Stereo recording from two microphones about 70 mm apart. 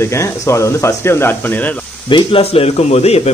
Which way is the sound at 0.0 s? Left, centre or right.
Left.